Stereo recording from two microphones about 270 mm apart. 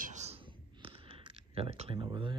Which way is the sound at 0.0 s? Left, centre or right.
Right.